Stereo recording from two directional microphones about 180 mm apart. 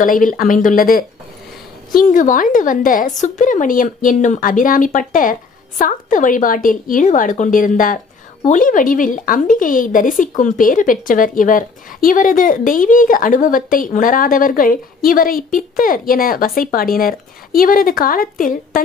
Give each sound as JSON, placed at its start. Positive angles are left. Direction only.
{"t": 0.0, "sound": "speech", "side_deg": 50}